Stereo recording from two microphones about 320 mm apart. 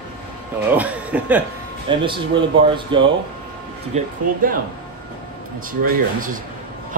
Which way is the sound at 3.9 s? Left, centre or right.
Right.